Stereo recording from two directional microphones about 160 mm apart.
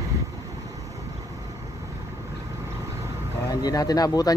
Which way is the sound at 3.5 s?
20° left (ahead or behind).